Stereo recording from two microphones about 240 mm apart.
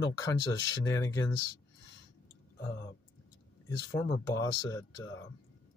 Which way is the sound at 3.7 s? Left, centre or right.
Centre.